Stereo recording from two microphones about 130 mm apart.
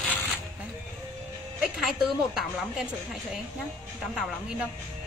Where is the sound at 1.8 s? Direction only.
Centre (ahead or behind).